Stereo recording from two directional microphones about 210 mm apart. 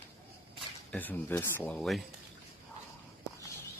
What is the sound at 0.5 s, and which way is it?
Speech, 10° left (ahead or behind).